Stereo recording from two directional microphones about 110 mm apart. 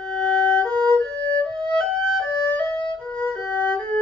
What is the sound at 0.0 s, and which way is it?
Music, 5° left (ahead or behind).